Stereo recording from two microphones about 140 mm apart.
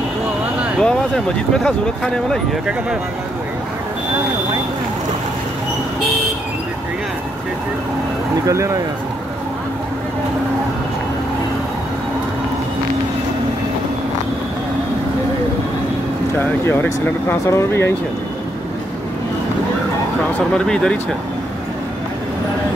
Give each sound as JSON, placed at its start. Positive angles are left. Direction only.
{"t": 0.7, "sound": "speech", "side_deg": 5}
{"t": 8.5, "sound": "speech", "side_deg": -20}
{"t": 16.3, "sound": "speech", "side_deg": 15}
{"t": 20.5, "sound": "speech", "side_deg": 5}